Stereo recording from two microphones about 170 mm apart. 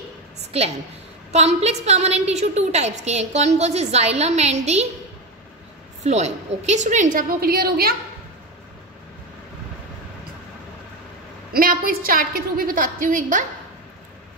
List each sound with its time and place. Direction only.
0.4 s a sound: 40° right (ahead or behind)
1.3 s a woman's voice: 40° right (ahead or behind)
6.0 s a woman's voice: 40° right (ahead or behind); by 7.9 s 65° right (ahead or behind)
11.5 s a woman's voice: 60° right (ahead or behind)